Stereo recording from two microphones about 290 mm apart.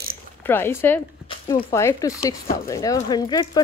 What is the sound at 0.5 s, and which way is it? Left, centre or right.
Speech, centre.